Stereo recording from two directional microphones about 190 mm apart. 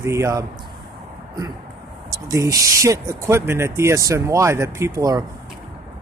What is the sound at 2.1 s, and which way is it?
Speech, 15° right (ahead or behind).